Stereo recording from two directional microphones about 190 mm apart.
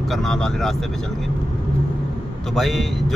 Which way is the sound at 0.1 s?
Centre (ahead or behind).